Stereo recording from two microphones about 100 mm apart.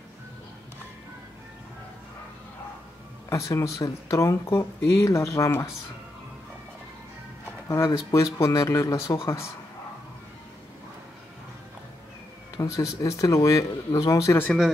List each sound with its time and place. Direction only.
3.3 s speech: 30° left (ahead or behind)
7.6 s speech: 35° left (ahead or behind)
12.5 s speech: 35° left (ahead or behind)